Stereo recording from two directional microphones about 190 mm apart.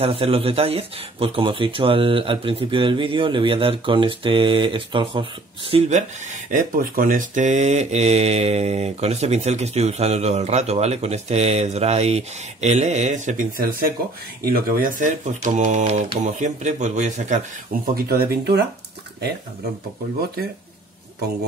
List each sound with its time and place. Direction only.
0.0 s speech: 30° right (ahead or behind)
17.9 s speech: 55° right (ahead or behind)